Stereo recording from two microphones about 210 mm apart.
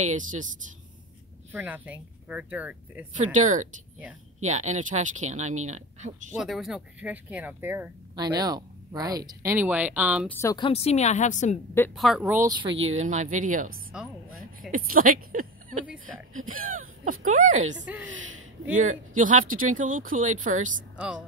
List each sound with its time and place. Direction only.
0.0 s speech: 35° right (ahead or behind)
1.5 s speech: 10° right (ahead or behind)
3.2 s speech: 35° right (ahead or behind)
6.3 s speech: centre (ahead or behind)
10.2 s a woman's voice: 10° left (ahead or behind); by 11.5 s 35° left (ahead or behind)
11.9 s speech: centre (ahead or behind)
12.4 s speech: 20° right (ahead or behind)
12.9 s speech: 35° right (ahead or behind)
18.8 s speech: 40° right (ahead or behind)